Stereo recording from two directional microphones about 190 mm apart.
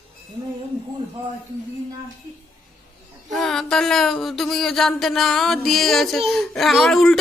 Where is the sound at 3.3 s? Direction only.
Centre (ahead or behind).